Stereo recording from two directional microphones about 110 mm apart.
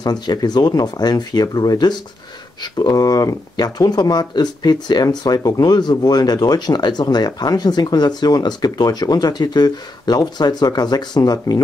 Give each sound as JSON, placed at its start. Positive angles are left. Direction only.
{"t": 0.0, "sound": "speech", "side_deg": 40}